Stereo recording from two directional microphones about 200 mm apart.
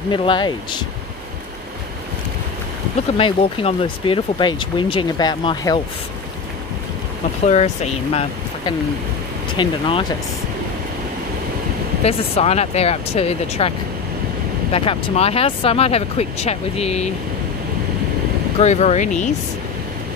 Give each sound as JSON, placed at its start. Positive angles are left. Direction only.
{"t": 0.1, "sound": "speech", "side_deg": 25}
{"t": 3.2, "sound": "speech", "side_deg": 25}
{"t": 7.4, "sound": "speech", "side_deg": 35}
{"t": 12.0, "sound": "speech", "side_deg": 30}
{"t": 18.6, "sound": "speech", "side_deg": 35}